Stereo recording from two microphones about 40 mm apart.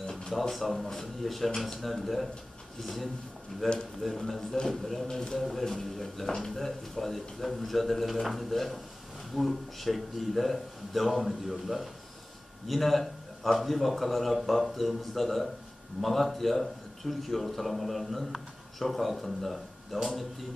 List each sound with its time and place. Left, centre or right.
0.3 s a man's voice: centre
5.1 s speech: centre
5.4 s a man's voice: centre